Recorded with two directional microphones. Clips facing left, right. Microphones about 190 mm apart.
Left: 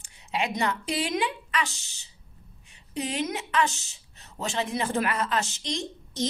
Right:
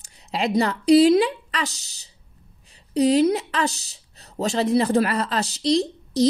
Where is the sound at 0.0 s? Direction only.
35° right (ahead or behind).